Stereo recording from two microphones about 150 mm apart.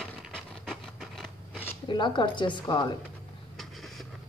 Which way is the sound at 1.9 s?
30° left (ahead or behind).